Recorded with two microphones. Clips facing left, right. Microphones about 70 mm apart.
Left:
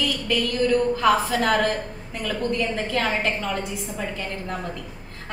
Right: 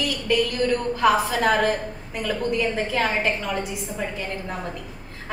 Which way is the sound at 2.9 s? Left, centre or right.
Centre.